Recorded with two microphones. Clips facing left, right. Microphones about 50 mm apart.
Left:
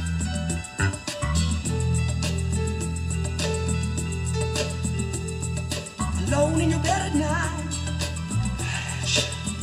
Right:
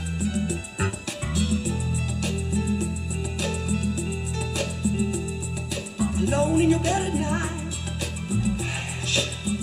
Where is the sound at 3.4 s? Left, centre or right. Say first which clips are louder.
Even; centre.